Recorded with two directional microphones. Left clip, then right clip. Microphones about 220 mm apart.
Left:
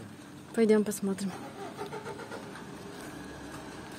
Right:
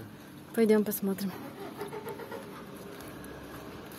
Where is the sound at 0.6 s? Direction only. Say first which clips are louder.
Even; centre (ahead or behind).